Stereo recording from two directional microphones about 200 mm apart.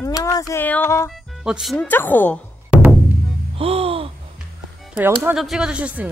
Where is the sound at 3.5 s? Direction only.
30° right (ahead or behind).